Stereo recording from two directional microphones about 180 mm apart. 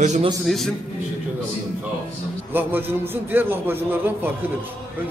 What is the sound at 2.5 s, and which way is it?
A man's voice, 10° right (ahead or behind).